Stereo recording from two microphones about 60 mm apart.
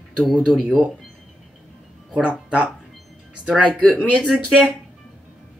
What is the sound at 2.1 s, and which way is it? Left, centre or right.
Speech, centre.